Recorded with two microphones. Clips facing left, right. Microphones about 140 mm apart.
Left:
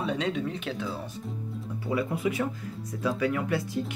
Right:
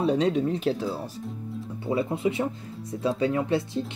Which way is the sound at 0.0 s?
35° right (ahead or behind).